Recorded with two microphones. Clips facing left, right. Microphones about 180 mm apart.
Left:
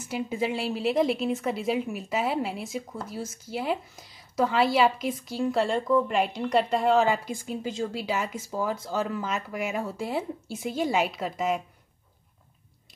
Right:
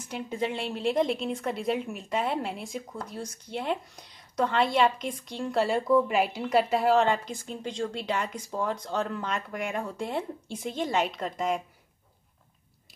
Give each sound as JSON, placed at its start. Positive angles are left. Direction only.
{"t": 0.0, "sound": "a woman's voice", "side_deg": 5}